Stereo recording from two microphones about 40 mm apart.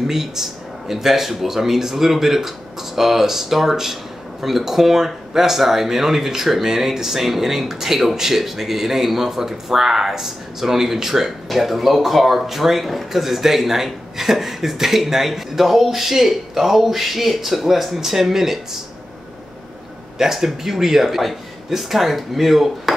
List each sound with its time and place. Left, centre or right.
0.0 s speech: centre
20.2 s speech: centre